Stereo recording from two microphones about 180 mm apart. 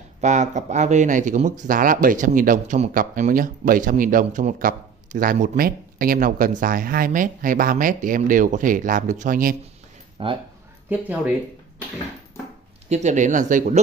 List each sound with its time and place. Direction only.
0.2 s speech: 40° right (ahead or behind)
10.2 s speech: 30° right (ahead or behind)
10.9 s speech: 10° right (ahead or behind)
12.9 s speech: 40° right (ahead or behind)